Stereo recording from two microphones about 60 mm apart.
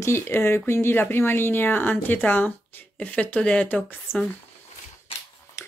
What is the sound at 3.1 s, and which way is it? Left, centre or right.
Speech, left.